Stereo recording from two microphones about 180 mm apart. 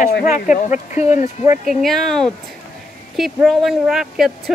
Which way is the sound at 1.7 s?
Centre (ahead or behind).